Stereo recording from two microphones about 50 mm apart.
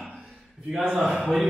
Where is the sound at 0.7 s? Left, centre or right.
Centre.